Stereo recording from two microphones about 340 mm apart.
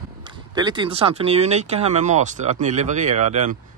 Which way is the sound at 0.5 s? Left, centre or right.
Centre.